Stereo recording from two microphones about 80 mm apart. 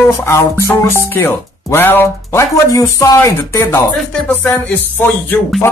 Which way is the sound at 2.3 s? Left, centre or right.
Left.